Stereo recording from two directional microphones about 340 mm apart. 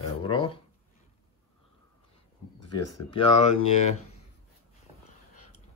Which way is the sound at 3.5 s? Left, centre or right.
Left.